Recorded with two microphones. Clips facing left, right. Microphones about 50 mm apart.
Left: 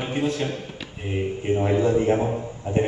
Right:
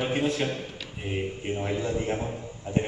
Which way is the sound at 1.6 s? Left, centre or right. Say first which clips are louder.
Left 9 dB; left.